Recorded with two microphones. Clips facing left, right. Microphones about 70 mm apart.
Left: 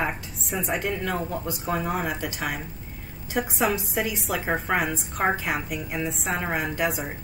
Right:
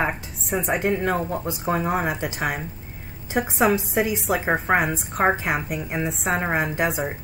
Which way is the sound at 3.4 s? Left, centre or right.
Right.